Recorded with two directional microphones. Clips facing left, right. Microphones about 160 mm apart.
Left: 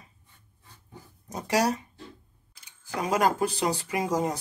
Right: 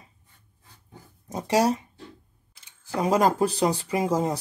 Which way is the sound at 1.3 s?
25° right (ahead or behind).